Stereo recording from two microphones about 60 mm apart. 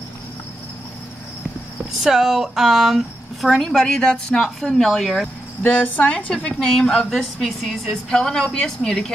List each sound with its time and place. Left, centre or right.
2.0 s speech: centre
5.6 s a woman's voice: left